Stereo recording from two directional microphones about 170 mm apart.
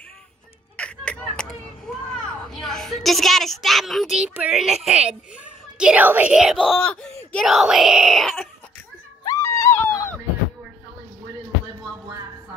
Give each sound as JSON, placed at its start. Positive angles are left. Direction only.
{"t": 0.7, "sound": "a sound", "side_deg": 5}
{"t": 2.6, "sound": "a woman's voice", "side_deg": 0}
{"t": 9.2, "sound": "wail", "side_deg": 20}